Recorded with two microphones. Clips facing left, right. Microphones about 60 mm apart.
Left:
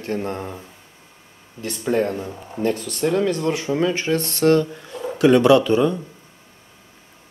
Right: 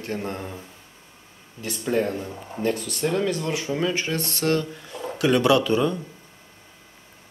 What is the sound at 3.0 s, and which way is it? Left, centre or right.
Speech, centre.